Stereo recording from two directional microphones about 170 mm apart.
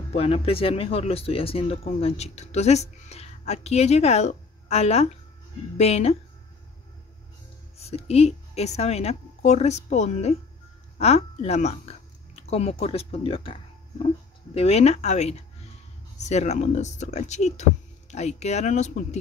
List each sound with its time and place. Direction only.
0.1 s speech: 35° left (ahead or behind)
7.7 s speech: 40° left (ahead or behind)